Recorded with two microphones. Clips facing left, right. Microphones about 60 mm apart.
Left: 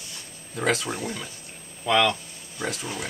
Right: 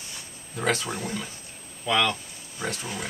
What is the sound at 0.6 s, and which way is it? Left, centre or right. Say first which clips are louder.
Speech: left 1 dB; centre.